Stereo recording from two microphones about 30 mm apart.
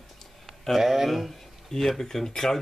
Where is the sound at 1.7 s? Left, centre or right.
Centre.